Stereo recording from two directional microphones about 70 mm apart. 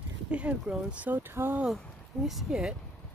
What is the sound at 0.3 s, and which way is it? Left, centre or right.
Speech, centre.